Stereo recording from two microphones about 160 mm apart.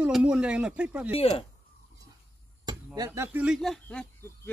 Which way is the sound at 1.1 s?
35° left (ahead or behind).